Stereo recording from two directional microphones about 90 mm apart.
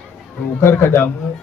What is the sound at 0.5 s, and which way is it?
Speech, 30° left (ahead or behind).